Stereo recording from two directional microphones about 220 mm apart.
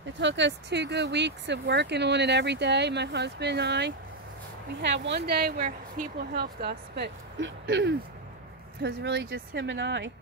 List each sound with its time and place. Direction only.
0.2 s speech: 55° right (ahead or behind)